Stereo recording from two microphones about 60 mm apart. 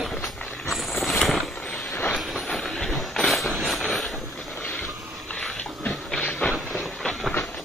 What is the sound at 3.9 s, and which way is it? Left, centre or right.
Vehicle, centre.